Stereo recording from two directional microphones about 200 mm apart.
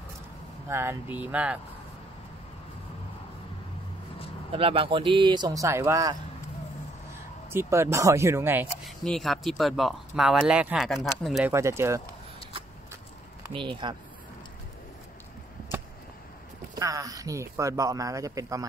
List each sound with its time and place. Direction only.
0.7 s speech: 10° right (ahead or behind)
4.5 s speech: 25° right (ahead or behind)
7.5 s speech: 15° right (ahead or behind)
8.8 s speech: centre (ahead or behind)
11.5 s speech: 15° right (ahead or behind)
13.5 s speech: 25° right (ahead or behind)
16.7 s speech: 15° right (ahead or behind)